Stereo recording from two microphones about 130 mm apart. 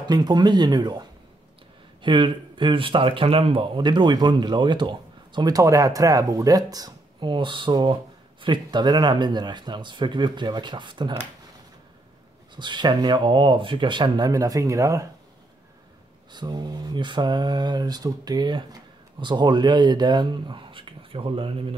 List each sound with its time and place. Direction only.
0.0 s speech: 30° right (ahead or behind)
12.5 s speech: 35° right (ahead or behind)
16.3 s speech: 35° right (ahead or behind)